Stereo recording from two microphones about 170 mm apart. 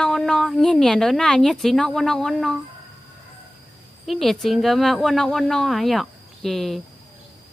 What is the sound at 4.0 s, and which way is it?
A woman's voice, centre (ahead or behind).